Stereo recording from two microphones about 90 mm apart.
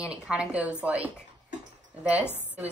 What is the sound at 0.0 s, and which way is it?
Speech, 10° right (ahead or behind).